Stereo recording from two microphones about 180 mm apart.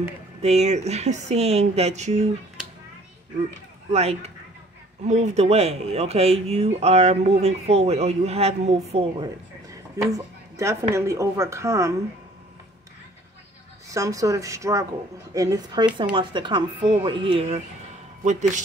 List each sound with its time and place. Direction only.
0.4 s speech: 35° right (ahead or behind)
3.9 s speech: 35° right (ahead or behind)
10.0 s speech: 15° right (ahead or behind)
13.8 s speech: 20° right (ahead or behind)
18.2 s speech: 40° right (ahead or behind)